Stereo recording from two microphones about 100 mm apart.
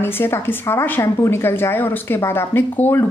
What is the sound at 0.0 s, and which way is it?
Speech, 25° left (ahead or behind).